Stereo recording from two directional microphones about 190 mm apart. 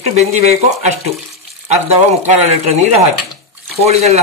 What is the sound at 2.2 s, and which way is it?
A man's voice, 35° right (ahead or behind).